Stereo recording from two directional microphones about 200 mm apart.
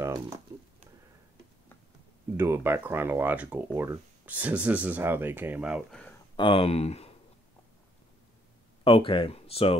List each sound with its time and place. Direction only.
0.5 s speech: 15° right (ahead or behind)
2.3 s speech: 10° right (ahead or behind); by 6.1 s 5° left (ahead or behind)
6.3 s speech: 25° left (ahead or behind)
8.8 s speech: 25° left (ahead or behind)